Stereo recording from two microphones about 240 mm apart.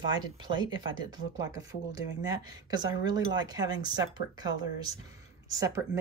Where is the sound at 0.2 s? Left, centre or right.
Centre.